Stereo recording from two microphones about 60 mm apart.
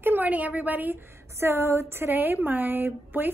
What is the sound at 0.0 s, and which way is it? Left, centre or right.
Speech, right.